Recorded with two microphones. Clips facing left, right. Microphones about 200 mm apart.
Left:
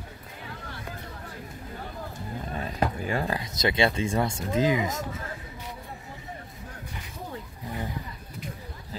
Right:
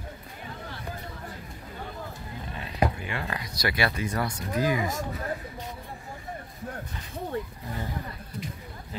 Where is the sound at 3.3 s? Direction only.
25° left (ahead or behind).